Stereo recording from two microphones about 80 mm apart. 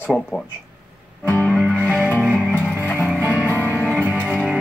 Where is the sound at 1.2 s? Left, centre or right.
Left.